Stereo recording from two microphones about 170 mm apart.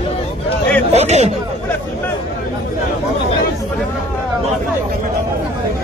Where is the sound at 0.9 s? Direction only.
40° right (ahead or behind).